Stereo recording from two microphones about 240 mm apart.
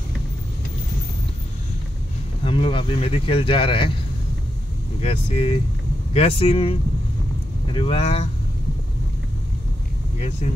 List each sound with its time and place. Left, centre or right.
2.4 s speech: left
5.0 s speech: left
10.4 s speech: left